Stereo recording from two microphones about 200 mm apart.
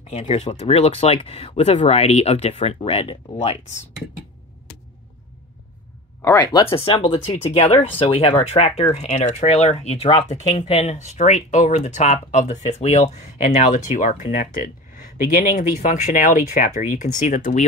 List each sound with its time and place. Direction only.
0.0 s speech: 35° left (ahead or behind)
6.2 s speech: 15° left (ahead or behind); by 17.6 s 40° left (ahead or behind)